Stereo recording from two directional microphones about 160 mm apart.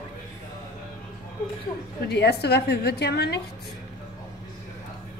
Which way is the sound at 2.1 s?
90° left.